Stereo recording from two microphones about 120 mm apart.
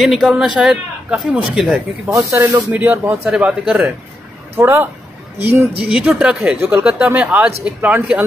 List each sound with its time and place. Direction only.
0.0 s speech: centre (ahead or behind)
2.0 s speech: 25° right (ahead or behind)
3.3 s speech: 5° right (ahead or behind)
4.6 s speech: 20° right (ahead or behind)